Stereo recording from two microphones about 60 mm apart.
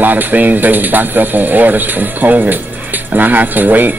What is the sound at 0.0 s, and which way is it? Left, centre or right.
Speech, right.